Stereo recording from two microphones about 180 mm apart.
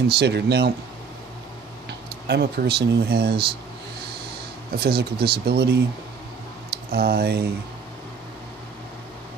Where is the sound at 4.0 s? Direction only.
65° right (ahead or behind).